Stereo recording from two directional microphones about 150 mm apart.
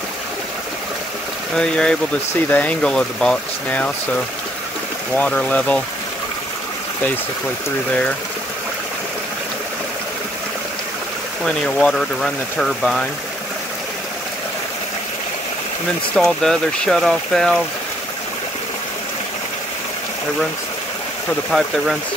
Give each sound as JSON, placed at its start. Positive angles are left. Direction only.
{"t": 1.6, "sound": "speech", "side_deg": 5}
{"t": 5.1, "sound": "speech", "side_deg": 10}
{"t": 11.4, "sound": "speech", "side_deg": 5}
{"t": 16.2, "sound": "speech", "side_deg": 5}
{"t": 21.5, "sound": "speech", "side_deg": 0}